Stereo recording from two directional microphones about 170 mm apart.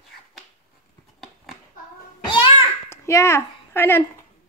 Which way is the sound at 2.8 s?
15° left (ahead or behind).